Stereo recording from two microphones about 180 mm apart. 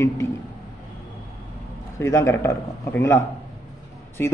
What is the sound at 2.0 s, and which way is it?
Speech, 15° left (ahead or behind).